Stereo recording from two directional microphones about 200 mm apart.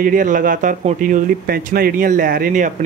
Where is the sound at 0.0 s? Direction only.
40° right (ahead or behind).